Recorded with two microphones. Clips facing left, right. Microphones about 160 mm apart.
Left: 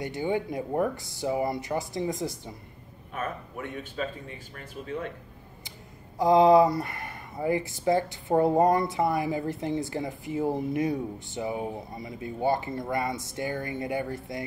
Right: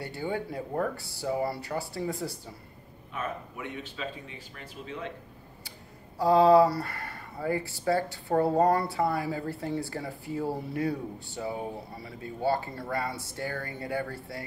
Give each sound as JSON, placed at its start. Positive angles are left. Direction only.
{"t": 0.0, "sound": "speech", "side_deg": 15}
{"t": 3.2, "sound": "speech", "side_deg": 50}
{"t": 6.1, "sound": "speech", "side_deg": 15}